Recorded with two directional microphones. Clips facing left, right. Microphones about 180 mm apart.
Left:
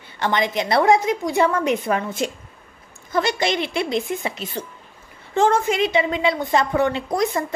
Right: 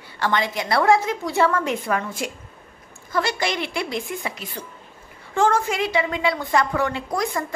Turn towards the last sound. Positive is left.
turn(degrees=20)  # may be behind; listen again after turning